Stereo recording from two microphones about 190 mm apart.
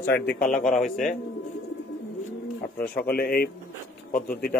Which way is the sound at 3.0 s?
55° left (ahead or behind).